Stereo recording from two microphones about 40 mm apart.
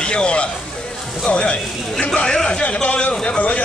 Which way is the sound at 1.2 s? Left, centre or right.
Left.